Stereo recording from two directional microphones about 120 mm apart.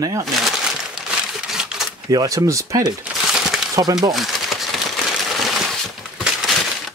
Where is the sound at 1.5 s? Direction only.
5° right (ahead or behind).